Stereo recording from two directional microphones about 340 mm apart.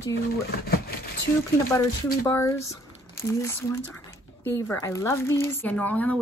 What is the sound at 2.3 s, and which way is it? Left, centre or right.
Speech, centre.